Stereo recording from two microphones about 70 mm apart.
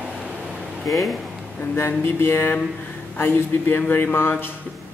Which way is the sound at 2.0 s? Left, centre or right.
Left.